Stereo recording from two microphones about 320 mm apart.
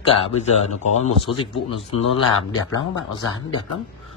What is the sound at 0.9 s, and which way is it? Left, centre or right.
Speech, centre.